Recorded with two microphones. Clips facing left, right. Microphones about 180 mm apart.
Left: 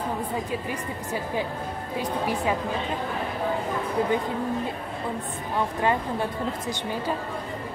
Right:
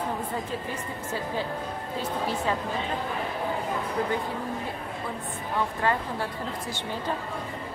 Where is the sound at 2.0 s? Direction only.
15° left (ahead or behind).